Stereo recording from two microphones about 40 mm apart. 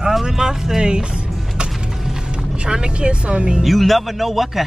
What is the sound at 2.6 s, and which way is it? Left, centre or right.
Speech, right.